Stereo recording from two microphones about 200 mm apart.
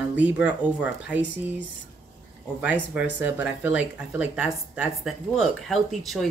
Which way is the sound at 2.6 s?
5° right (ahead or behind).